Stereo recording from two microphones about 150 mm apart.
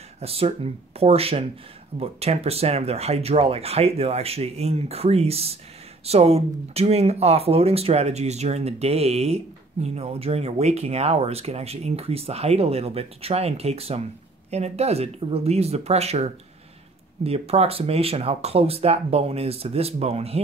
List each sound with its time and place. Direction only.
0.2 s speech: 40° right (ahead or behind)